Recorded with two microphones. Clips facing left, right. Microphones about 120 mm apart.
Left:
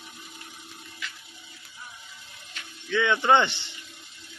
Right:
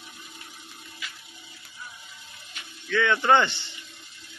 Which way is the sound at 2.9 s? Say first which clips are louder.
Even; 15° left (ahead or behind).